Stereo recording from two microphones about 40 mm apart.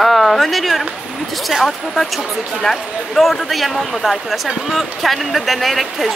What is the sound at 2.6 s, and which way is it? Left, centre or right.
Speech, centre.